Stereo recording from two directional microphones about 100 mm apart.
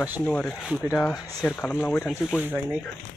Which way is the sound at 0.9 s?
25° left (ahead or behind).